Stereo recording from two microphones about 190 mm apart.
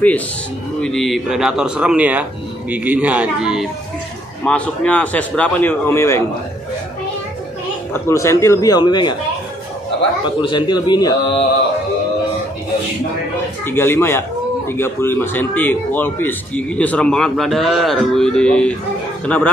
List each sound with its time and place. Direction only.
0.7 s a man's voice: 5° left (ahead or behind)
4.5 s a man's voice: 5° left (ahead or behind)
7.9 s a man's voice: 15° left (ahead or behind)
10.4 s speech: 25° left (ahead or behind)
13.7 s a man's voice: 10° left (ahead or behind)